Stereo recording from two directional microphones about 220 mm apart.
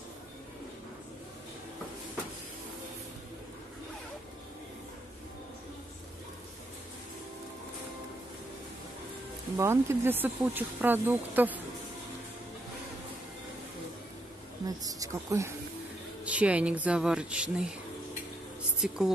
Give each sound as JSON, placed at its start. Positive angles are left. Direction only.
{"t": 9.6, "sound": "speech", "side_deg": -10}
{"t": 14.8, "sound": "speech", "side_deg": -15}
{"t": 18.8, "sound": "speech", "side_deg": 0}